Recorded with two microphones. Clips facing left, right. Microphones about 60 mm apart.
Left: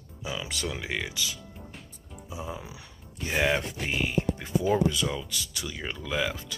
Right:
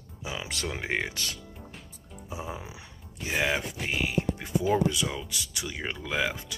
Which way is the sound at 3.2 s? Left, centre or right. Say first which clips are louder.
Left 2 dB; centre.